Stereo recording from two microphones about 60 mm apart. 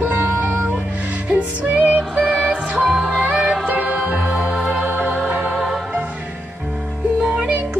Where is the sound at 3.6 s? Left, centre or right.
Right.